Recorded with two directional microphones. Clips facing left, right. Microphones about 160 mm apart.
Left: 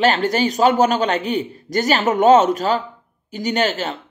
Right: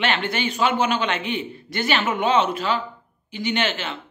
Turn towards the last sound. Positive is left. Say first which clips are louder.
# left 5 dB
turn(degrees=40)  # may be behind; listen again after turning